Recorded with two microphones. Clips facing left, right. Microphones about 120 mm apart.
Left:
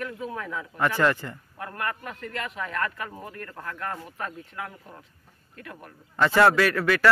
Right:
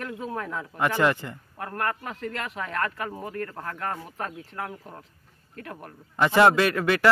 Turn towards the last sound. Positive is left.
turn(degrees=-25)  # may be behind; listen again after turning